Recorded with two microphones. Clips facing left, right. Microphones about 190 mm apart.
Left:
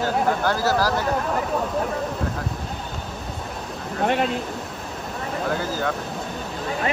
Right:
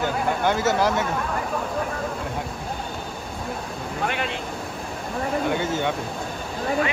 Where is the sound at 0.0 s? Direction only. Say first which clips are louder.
Left 1 dB; 20° right (ahead or behind).